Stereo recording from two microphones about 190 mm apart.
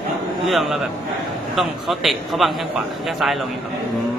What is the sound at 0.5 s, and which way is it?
A man's voice, centre (ahead or behind).